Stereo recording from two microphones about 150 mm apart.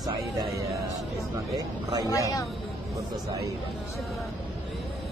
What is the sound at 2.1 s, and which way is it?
Speech, 20° left (ahead or behind).